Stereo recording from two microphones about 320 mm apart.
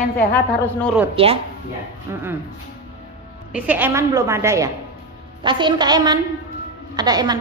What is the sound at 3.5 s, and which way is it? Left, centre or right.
A woman's voice, centre.